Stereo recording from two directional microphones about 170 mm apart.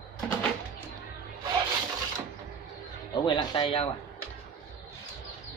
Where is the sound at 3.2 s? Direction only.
30° left (ahead or behind).